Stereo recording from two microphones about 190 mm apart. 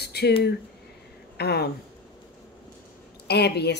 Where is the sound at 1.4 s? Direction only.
55° left (ahead or behind).